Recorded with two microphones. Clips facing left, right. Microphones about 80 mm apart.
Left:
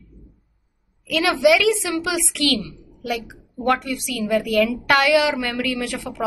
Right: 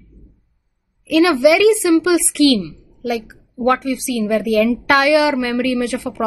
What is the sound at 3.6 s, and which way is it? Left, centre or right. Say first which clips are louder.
A woman's voice: right 4 dB; right.